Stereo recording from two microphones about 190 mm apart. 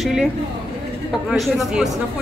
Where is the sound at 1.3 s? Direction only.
Centre (ahead or behind).